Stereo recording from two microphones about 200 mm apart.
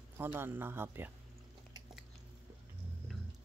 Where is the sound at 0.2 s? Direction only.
10° right (ahead or behind).